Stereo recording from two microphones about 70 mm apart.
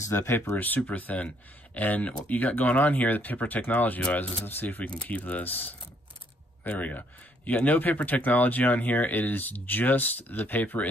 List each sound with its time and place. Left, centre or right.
0.0 s speech: left
0.6 s speech: left